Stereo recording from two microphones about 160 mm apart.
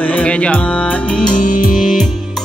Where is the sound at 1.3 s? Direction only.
60° left (ahead or behind).